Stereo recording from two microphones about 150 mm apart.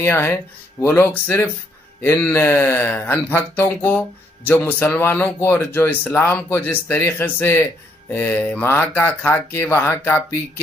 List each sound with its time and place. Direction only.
0.0 s speech: 15° left (ahead or behind)